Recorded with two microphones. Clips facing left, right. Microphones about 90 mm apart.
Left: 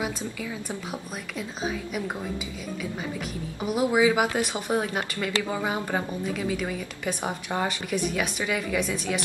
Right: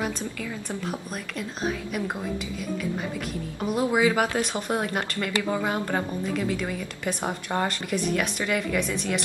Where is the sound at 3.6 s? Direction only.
10° left (ahead or behind).